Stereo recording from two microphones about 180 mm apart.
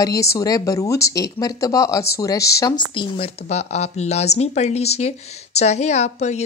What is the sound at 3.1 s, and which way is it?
Speech, 35° left (ahead or behind).